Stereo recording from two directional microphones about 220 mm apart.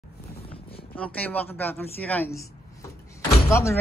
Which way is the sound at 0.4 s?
25° left (ahead or behind).